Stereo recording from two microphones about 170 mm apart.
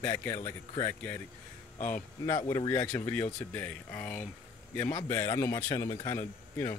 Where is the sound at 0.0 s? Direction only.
15° left (ahead or behind).